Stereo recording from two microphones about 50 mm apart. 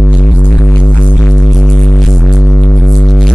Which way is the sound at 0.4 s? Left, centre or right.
Left.